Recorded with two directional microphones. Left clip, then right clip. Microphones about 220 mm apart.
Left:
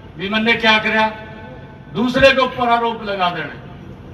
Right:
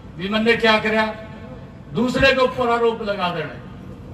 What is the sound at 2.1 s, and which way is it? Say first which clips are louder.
Speech: left 4 dB; 65° right (ahead or behind).